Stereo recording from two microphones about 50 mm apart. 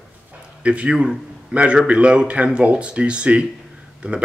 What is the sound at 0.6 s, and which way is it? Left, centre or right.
Speech, right.